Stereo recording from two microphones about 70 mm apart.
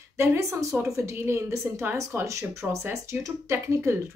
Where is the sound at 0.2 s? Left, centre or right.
Right.